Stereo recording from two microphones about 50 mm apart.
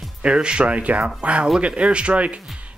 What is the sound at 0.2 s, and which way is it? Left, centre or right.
Speech, centre.